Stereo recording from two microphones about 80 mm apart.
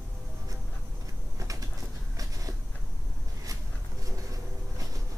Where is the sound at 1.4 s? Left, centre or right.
Right.